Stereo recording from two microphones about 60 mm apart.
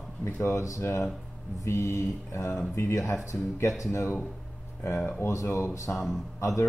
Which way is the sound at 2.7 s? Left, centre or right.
Left.